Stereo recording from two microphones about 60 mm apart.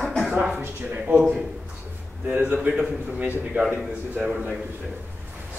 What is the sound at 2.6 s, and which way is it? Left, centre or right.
A man's voice, right.